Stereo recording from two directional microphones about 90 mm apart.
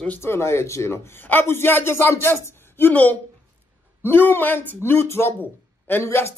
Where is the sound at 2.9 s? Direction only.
15° left (ahead or behind).